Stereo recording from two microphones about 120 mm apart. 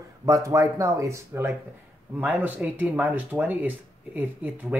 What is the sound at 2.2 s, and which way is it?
Speech, 15° right (ahead or behind).